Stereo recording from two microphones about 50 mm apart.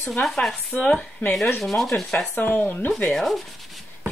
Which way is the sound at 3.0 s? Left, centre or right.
Centre.